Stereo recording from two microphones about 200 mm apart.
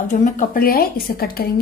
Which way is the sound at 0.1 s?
40° left (ahead or behind).